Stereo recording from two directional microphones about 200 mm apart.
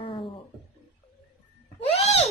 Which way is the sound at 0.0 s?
25° left (ahead or behind).